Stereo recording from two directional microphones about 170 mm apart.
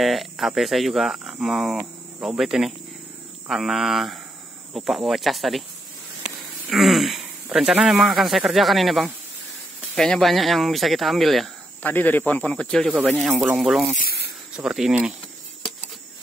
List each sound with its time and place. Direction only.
0.0 s speech: centre (ahead or behind)
6.7 s a sound: centre (ahead or behind)
7.5 s speech: centre (ahead or behind)
13.9 s snake: 60° left (ahead or behind)
14.5 s speech: 5° right (ahead or behind)